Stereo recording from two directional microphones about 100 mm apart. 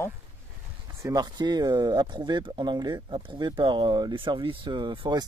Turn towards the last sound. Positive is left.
turn(degrees=-50)  # may be behind; listen again after turning